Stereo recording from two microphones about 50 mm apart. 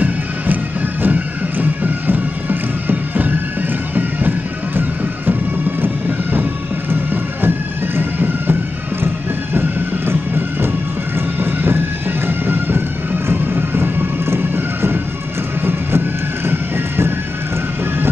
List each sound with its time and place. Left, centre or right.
1.0 s music: right
6.9 s bagpipes: right
9.0 s music: right
12.3 s bagpipes: right
13.3 s music: right
16.4 s music: right